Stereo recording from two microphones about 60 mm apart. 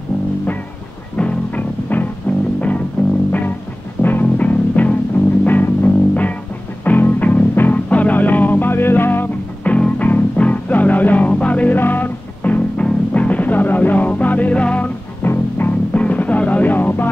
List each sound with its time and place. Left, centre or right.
1.1 s music: left
3.3 s music: left
9.7 s music: left
15.2 s music: left
16.0 s music: left